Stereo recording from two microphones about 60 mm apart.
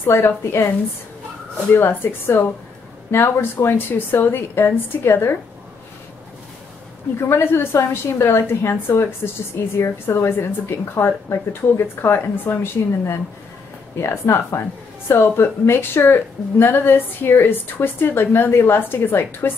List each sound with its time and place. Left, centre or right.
0.0 s a woman's voice: left
1.7 s speech: left
7.2 s a woman's voice: left
12.8 s speech: left
14.0 s a woman's voice: left